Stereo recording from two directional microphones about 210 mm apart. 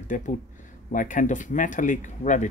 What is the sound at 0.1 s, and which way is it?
Speech, 40° left (ahead or behind).